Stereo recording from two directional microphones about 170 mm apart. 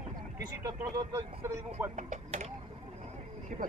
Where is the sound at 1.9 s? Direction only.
45° right (ahead or behind).